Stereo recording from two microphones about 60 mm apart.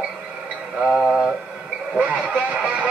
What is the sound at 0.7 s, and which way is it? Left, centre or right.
Speech, centre.